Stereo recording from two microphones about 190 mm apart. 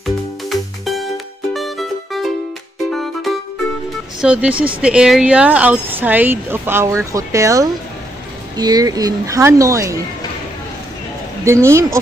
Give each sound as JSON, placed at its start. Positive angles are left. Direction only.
{"t": 0.0, "sound": "music", "side_deg": 0}
{"t": 4.8, "sound": "speech", "side_deg": -5}
{"t": 11.4, "sound": "speech", "side_deg": -15}